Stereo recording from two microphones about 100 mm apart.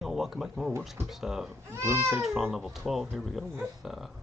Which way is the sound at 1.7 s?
25° right (ahead or behind).